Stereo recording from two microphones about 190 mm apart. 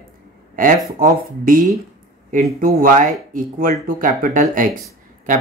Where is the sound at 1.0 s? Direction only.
45° right (ahead or behind).